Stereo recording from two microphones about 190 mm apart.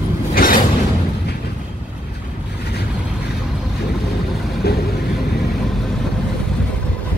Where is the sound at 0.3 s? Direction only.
50° left (ahead or behind).